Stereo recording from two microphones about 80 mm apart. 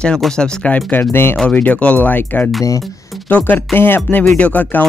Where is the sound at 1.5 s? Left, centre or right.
Centre.